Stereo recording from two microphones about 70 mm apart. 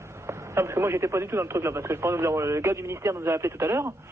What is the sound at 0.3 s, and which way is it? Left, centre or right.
Speech, right.